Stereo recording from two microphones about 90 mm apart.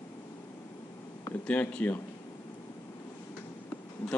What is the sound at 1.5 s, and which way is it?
Speech, 15° left (ahead or behind).